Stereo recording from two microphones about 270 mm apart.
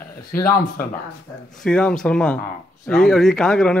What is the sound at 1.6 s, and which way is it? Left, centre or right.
Speech, centre.